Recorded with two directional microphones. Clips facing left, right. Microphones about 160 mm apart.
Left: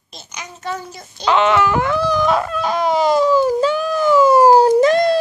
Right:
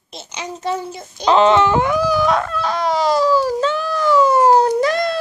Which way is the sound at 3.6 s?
10° left (ahead or behind).